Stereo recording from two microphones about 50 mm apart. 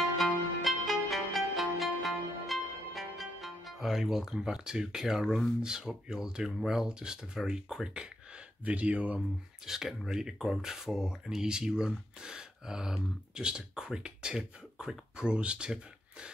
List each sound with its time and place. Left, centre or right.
0.2 s music: centre
5.6 s speech: centre
7.9 s speech: centre
9.7 s speech: centre